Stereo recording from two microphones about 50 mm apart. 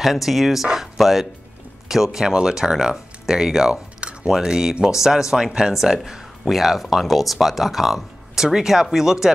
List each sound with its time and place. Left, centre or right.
0.0 s speech: centre
3.7 s a sound: right
4.3 s speech: centre